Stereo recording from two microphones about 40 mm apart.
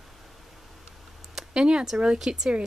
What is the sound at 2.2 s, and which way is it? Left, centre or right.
Speech, centre.